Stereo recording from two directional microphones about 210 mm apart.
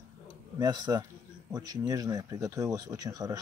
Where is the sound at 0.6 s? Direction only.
20° right (ahead or behind).